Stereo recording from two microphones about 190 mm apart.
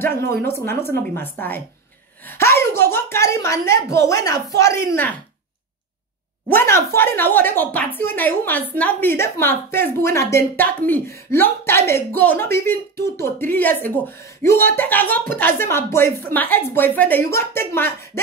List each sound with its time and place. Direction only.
0.5 s a woman's voice: 15° left (ahead or behind)
6.5 s a woman's voice: 15° left (ahead or behind)